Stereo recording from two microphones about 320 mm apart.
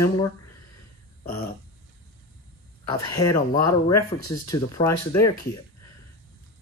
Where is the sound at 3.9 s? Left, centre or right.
Left.